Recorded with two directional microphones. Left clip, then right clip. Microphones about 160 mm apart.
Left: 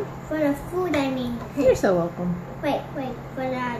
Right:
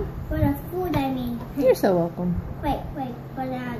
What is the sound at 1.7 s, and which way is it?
Speech, 40° right (ahead or behind).